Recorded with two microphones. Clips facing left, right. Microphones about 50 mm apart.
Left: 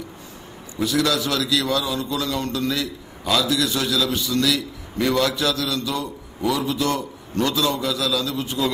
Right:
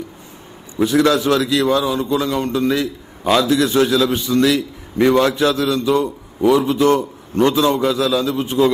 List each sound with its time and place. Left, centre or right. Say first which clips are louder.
0.7 s a man's voice: right 7 dB; right